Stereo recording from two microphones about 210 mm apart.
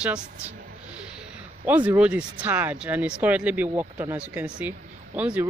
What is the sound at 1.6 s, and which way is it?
Speech, 10° right (ahead or behind).